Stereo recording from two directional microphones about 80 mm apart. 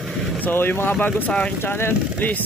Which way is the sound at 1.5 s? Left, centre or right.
Left.